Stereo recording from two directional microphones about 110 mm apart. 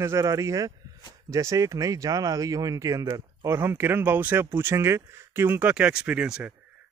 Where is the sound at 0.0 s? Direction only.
30° right (ahead or behind).